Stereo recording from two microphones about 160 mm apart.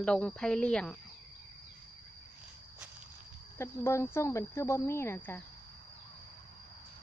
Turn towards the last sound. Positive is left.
turn(degrees=10)  # may be behind; listen again after turning